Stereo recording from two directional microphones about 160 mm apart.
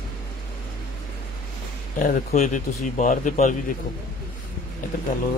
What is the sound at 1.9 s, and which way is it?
Speech, 55° left (ahead or behind).